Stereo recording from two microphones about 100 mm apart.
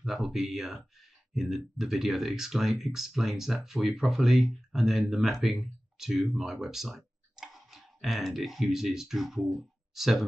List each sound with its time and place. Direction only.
0.0 s speech: centre (ahead or behind)